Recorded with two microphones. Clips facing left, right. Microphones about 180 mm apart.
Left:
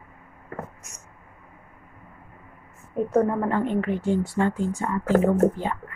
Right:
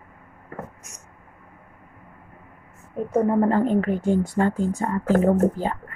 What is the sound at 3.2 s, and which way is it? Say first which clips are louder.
Speech: right 4 dB; 35° right (ahead or behind).